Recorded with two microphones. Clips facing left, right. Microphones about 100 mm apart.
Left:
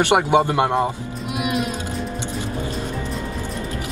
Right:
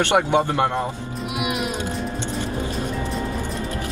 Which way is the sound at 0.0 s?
15° left (ahead or behind).